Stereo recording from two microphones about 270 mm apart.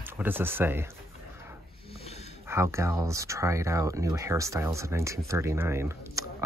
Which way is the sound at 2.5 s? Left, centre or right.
Centre.